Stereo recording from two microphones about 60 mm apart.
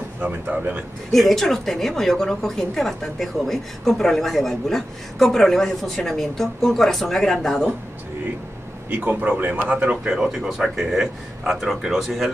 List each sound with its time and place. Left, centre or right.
0.3 s speech: right
1.1 s a woman's voice: centre
8.9 s speech: right
10.0 s a woman's voice: centre